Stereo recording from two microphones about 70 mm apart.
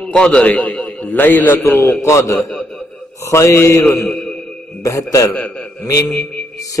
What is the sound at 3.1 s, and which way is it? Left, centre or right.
Mantra, left.